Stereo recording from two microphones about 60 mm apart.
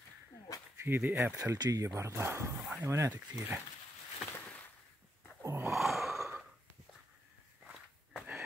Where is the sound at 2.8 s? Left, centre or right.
Right.